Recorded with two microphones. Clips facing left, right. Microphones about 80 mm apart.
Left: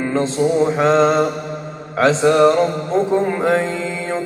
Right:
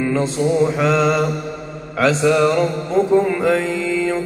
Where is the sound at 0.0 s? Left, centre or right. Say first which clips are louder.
Left 1 dB; left.